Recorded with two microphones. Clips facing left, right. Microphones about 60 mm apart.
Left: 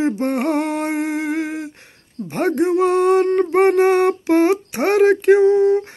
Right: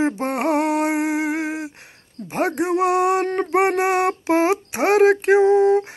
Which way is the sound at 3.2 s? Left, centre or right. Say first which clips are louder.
Left 5 dB; right.